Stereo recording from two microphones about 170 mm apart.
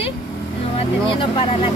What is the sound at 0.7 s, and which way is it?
Speech, 30° left (ahead or behind).